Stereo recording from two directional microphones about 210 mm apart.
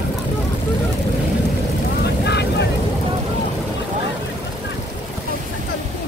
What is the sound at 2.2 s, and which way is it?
Vehicle, 55° left (ahead or behind).